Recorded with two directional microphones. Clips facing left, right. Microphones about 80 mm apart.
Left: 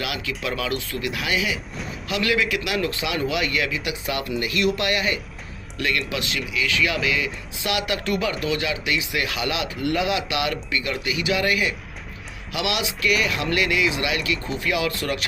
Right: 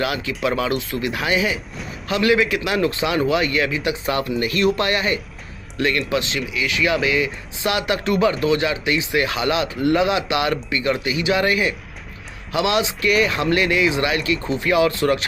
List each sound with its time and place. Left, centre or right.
0.0 s a man's voice: right